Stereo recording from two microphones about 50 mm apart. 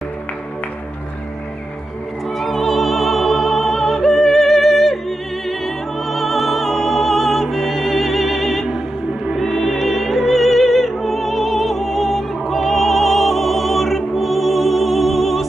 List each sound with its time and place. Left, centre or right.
2.3 s music: centre
6.0 s music: centre